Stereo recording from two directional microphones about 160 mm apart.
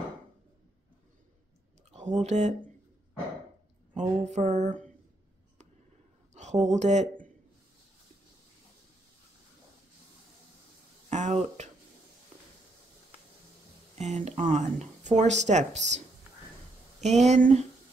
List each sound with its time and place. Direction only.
1.9 s speech: 45° right (ahead or behind)
3.9 s speech: 45° right (ahead or behind)
6.3 s a sound: 45° right (ahead or behind)
11.1 s speech: 45° right (ahead or behind)
13.9 s speech: 45° right (ahead or behind)
17.0 s speech: 45° right (ahead or behind)